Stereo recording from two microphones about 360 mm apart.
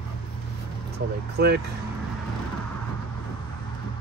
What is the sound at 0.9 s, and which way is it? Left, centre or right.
Speech, right.